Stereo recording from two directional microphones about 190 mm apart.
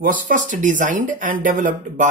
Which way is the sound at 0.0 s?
45° right (ahead or behind).